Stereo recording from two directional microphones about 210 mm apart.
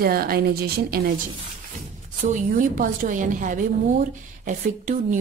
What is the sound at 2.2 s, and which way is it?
A woman's voice, 40° right (ahead or behind).